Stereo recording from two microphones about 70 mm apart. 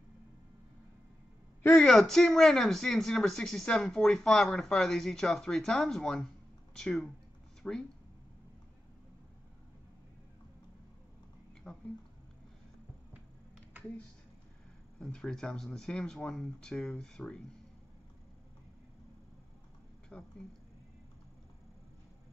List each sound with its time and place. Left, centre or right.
1.8 s speech: centre
11.6 s a sound: centre
15.0 s speech: centre
20.1 s speech: centre